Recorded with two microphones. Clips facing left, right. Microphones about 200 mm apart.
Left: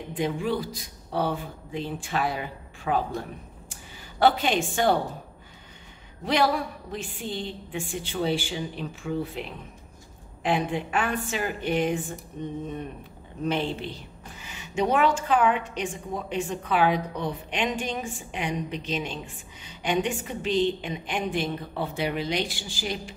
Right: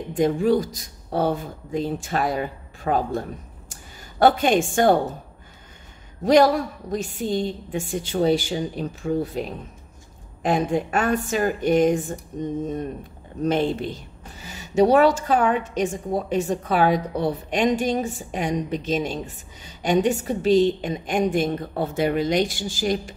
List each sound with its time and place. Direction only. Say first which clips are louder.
0.1 s a woman's voice: right 8 dB; 45° right (ahead or behind)
6.2 s a woman's voice: right 8 dB; 45° right (ahead or behind)